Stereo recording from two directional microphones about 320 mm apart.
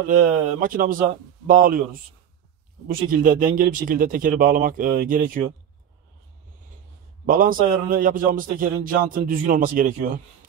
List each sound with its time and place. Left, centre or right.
0.1 s a man's voice: right
7.2 s a man's voice: right